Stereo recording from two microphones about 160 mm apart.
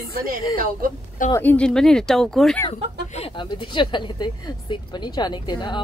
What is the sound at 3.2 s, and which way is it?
Speech, 35° left (ahead or behind).